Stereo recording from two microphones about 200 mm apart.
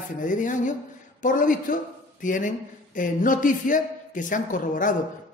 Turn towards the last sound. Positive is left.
turn(degrees=40)  # may be behind; listen again after turning